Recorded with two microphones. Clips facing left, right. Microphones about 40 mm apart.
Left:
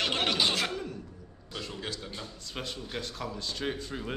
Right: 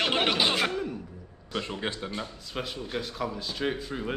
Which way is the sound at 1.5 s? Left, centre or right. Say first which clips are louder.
Right 6 dB; right.